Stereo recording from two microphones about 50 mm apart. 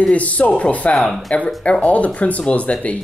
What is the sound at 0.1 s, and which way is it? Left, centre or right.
Speech, left.